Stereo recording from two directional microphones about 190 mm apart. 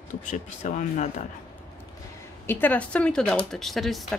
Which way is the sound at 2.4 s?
10° left (ahead or behind).